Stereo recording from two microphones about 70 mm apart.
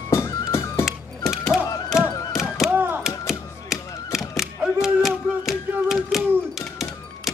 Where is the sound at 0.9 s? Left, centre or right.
Centre.